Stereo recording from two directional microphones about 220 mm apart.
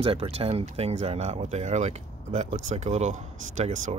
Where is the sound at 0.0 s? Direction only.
25° right (ahead or behind).